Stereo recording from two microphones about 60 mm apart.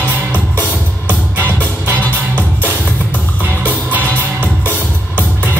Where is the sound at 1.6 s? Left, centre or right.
Right.